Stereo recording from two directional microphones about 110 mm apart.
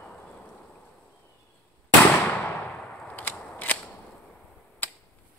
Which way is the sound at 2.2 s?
15° left (ahead or behind).